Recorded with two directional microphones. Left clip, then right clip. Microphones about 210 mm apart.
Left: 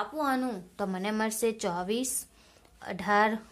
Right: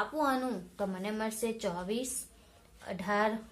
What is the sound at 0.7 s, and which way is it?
A woman's voice, 50° left (ahead or behind).